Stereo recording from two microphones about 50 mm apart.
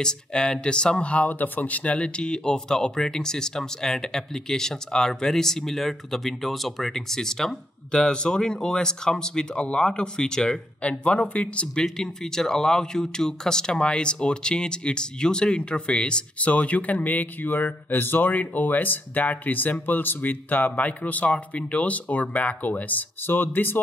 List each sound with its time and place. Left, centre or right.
0.0 s speech: centre
11.8 s speech: centre; by 23.8 s left